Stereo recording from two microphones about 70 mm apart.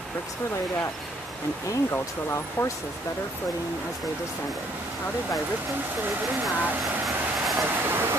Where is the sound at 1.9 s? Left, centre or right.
Left.